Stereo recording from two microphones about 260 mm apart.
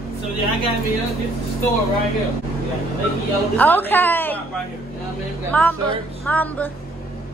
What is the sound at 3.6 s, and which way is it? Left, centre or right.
Speech, centre.